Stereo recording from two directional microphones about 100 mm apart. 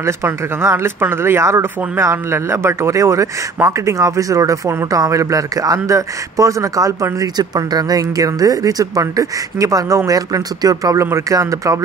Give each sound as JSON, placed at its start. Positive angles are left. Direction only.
{"t": 0.0, "sound": "speech", "side_deg": -25}